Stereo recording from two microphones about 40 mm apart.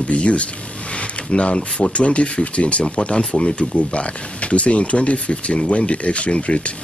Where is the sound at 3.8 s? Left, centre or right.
Left.